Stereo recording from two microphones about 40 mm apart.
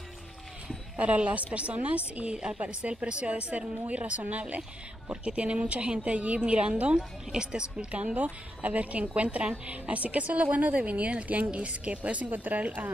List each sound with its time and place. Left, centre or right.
0.9 s a woman's voice: right
7.9 s a woman's voice: right